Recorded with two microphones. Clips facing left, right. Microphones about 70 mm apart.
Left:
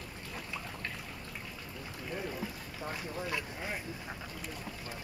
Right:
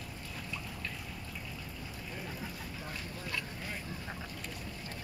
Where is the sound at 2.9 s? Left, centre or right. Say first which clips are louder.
Left 5 dB; left.